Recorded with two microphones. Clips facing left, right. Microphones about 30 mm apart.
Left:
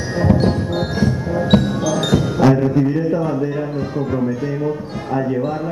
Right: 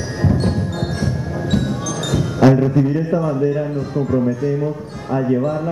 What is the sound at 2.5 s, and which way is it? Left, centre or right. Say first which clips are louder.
Speech: even; centre.